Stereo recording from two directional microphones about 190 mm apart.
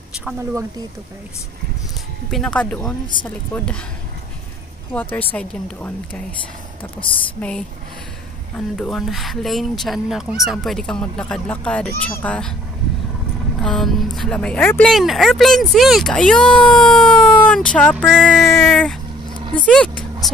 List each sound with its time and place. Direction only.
2.3 s speech: 5° left (ahead or behind)
4.9 s speech: 10° left (ahead or behind)
7.0 s a woman's voice: 25° left (ahead or behind)
7.3 s speech: 5° left (ahead or behind)
8.7 s speech: centre (ahead or behind)
13.6 s speech: centre (ahead or behind)